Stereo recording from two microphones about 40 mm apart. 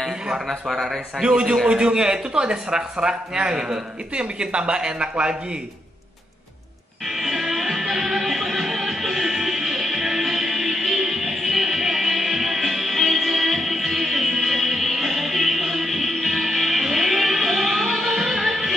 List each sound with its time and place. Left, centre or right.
0.3 s a man's voice: centre
1.2 s speech: right
7.1 s music: centre